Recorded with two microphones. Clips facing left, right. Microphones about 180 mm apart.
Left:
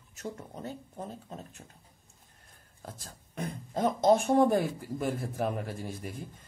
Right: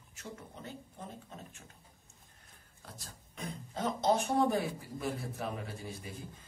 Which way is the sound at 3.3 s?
50° left (ahead or behind).